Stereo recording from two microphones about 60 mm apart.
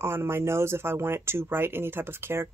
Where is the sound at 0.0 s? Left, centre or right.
Right.